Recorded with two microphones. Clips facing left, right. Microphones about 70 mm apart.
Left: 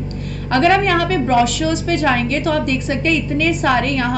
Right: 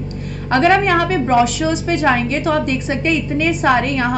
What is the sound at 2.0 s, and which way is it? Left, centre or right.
Speech, centre.